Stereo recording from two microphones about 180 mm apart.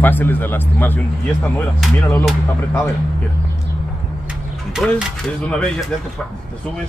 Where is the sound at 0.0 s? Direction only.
10° left (ahead or behind).